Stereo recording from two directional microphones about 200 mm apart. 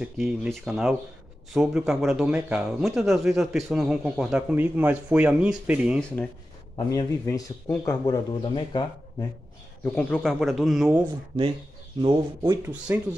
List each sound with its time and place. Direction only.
0.0 s speech: 5° right (ahead or behind)
6.9 s speech: 20° left (ahead or behind)
9.9 s speech: 5° left (ahead or behind)
12.0 s speech: 25° right (ahead or behind)
12.6 s speech: 5° right (ahead or behind)